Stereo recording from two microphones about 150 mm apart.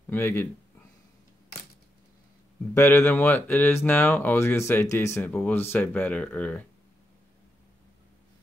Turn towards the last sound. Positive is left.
turn(degrees=10)  # may be behind; listen again after turning